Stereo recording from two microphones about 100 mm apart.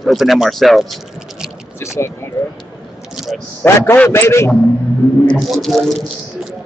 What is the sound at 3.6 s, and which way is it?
Speech, 20° left (ahead or behind).